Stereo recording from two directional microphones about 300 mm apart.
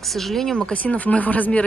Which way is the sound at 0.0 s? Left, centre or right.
Centre.